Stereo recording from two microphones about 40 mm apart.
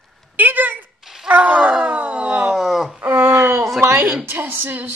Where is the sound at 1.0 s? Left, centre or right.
Centre.